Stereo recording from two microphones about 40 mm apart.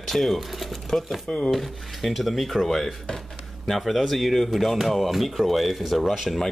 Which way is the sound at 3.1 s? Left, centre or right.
Centre.